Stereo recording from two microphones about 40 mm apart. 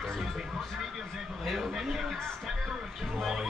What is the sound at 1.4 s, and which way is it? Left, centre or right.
Speech, centre.